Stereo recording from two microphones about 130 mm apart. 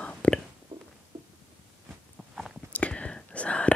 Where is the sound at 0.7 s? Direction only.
40° right (ahead or behind).